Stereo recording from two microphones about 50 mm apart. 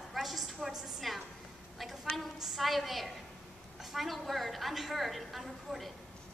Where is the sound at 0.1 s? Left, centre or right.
Centre.